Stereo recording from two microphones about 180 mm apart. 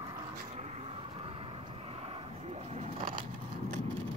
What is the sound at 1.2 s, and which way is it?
Vehicle, 30° right (ahead or behind).